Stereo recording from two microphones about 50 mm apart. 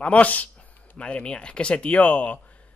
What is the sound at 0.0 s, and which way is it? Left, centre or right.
Speech, left.